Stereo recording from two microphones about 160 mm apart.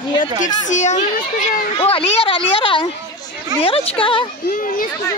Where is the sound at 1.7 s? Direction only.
35° left (ahead or behind).